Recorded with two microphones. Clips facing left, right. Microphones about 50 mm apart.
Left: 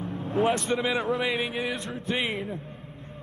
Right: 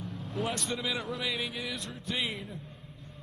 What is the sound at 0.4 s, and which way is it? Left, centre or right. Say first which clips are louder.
Speech: left 9 dB; left.